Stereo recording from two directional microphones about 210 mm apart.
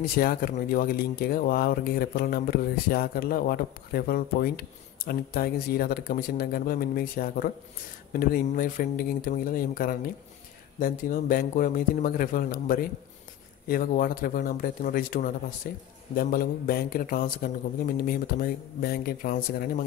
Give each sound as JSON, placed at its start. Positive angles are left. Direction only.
{"t": 0.0, "sound": "speech", "side_deg": 45}